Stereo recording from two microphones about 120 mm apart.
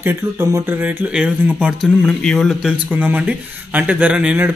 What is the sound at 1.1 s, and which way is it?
Speech, 5° right (ahead or behind).